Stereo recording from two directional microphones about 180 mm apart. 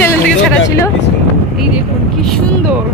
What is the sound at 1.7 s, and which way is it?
Vehicle, 5° left (ahead or behind).